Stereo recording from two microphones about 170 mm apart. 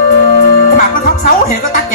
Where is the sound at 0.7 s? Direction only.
50° left (ahead or behind).